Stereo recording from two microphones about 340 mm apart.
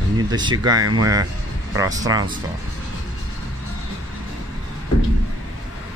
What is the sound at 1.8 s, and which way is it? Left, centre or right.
Speech, centre.